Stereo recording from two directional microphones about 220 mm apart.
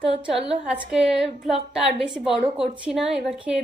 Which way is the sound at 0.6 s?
5° right (ahead or behind).